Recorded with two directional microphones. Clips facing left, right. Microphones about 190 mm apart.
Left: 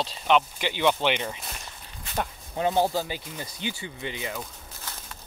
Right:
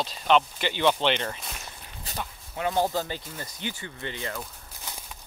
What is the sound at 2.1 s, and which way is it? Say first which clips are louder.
Speech: left 6 dB; 40° right (ahead or behind).